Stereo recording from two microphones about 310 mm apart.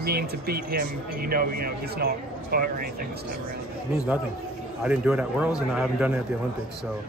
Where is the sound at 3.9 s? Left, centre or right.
Centre.